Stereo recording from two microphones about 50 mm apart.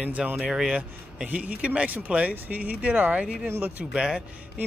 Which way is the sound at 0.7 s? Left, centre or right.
Right.